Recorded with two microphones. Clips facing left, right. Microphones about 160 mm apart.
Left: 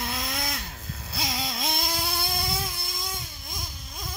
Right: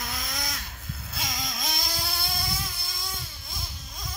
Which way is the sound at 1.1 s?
30° left (ahead or behind).